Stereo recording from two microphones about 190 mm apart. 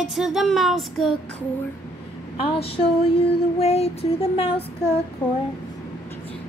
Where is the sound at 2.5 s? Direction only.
30° left (ahead or behind).